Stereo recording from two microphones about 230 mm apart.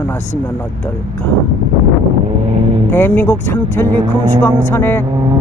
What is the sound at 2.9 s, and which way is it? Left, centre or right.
Speech, centre.